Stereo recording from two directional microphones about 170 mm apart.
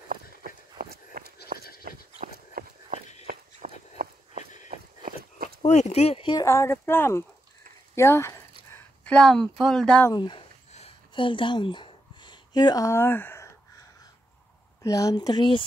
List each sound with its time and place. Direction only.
0.7 s walk: 60° right (ahead or behind)
1.9 s horse: 60° right (ahead or behind)
2.6 s walk: 60° right (ahead or behind)
3.6 s a sound: 45° right (ahead or behind)
5.7 s speech: 40° left (ahead or behind)
6.4 s speech: 15° left (ahead or behind)
9.0 s speech: 5° left (ahead or behind)
10.1 s speech: 25° left (ahead or behind)
10.7 s a sound: 35° left (ahead or behind); by 13.8 s 15° left (ahead or behind)
14.8 s speech: 20° left (ahead or behind)